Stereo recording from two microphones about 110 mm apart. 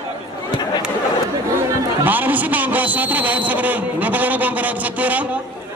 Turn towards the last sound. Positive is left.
turn(degrees=-15)  # may be behind; listen again after turning